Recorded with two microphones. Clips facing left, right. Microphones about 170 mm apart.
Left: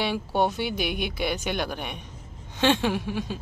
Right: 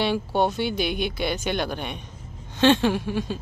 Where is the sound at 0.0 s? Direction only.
10° left (ahead or behind).